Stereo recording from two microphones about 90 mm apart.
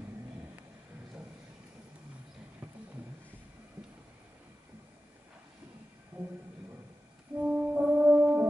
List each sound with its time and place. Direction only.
7.3 s brass instrument: 15° right (ahead or behind)